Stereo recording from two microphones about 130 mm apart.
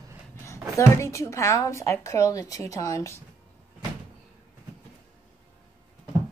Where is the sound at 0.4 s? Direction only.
20° left (ahead or behind).